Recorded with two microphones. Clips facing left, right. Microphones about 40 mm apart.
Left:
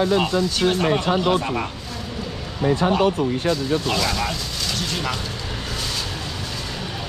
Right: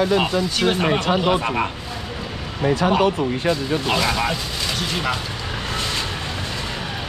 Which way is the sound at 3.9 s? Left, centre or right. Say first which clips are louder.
Right 2 dB; centre.